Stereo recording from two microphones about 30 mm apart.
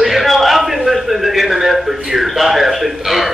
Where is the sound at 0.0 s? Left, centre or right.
Centre.